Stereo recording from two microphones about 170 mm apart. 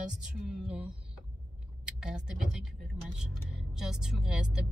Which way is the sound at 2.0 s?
5° right (ahead or behind).